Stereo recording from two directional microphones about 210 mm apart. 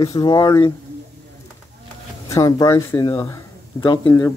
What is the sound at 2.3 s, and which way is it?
Speech, 15° left (ahead or behind).